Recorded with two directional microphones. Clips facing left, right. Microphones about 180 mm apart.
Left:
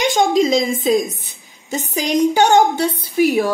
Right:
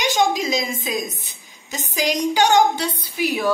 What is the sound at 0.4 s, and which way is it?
A woman's voice, 50° left (ahead or behind).